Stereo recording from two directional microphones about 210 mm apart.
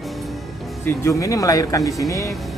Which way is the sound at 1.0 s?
15° left (ahead or behind).